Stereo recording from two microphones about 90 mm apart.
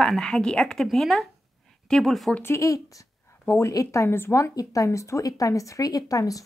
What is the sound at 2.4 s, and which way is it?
A woman's voice, 35° left (ahead or behind).